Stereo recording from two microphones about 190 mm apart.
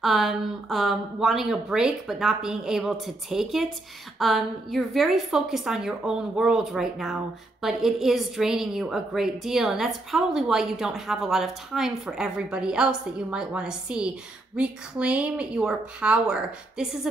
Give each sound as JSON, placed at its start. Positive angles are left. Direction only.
{"t": 0.0, "sound": "a woman's voice", "side_deg": 0}